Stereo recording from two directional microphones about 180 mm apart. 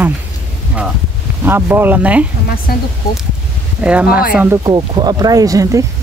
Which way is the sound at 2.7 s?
55° left (ahead or behind).